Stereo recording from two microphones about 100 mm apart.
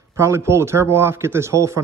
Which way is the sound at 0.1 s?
30° right (ahead or behind).